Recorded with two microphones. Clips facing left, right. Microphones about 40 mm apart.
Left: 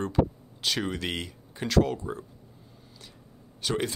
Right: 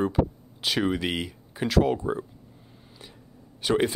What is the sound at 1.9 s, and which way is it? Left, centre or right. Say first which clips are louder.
Speech: right 6 dB; right.